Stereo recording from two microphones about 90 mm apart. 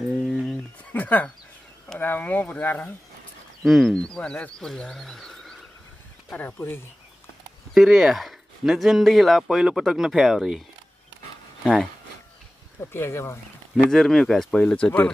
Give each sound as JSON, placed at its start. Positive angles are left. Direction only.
{"t": 0.0, "sound": "a sound", "side_deg": 0}
{"t": 0.9, "sound": "a sound", "side_deg": 20}
{"t": 2.0, "sound": "speech", "side_deg": 20}
{"t": 3.6, "sound": "speech", "side_deg": 0}
{"t": 6.3, "sound": "speech", "side_deg": 20}
{"t": 7.7, "sound": "speech", "side_deg": -5}
{"t": 11.6, "sound": "speech", "side_deg": -5}
{"t": 12.9, "sound": "speech", "side_deg": 30}
{"t": 13.8, "sound": "speech", "side_deg": 5}